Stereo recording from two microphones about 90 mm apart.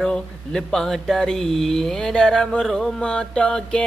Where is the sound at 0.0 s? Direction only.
5° left (ahead or behind).